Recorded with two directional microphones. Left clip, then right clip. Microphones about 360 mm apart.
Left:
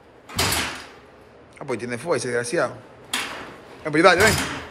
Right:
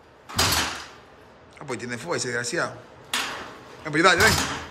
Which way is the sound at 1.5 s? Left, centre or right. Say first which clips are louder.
Left 4 dB; centre.